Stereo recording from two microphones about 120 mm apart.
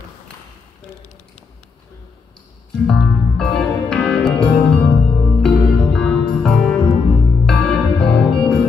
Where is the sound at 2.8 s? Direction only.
5° left (ahead or behind).